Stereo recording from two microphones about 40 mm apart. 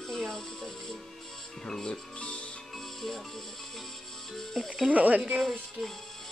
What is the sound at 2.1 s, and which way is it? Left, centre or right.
Music, left.